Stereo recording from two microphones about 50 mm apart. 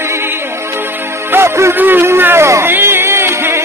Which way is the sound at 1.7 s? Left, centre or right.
Right.